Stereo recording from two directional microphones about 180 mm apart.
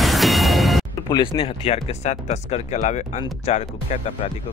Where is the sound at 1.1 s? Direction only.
30° left (ahead or behind).